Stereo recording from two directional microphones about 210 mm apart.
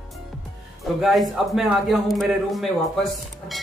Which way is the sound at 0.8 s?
Centre (ahead or behind).